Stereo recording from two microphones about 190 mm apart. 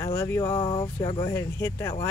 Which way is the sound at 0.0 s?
15° left (ahead or behind).